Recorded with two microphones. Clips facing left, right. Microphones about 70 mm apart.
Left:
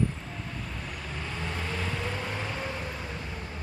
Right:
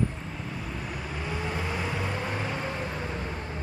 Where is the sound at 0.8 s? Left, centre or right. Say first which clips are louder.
Right 3 dB; centre.